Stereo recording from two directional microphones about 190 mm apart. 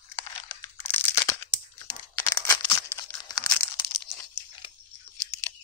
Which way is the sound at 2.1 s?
15° left (ahead or behind).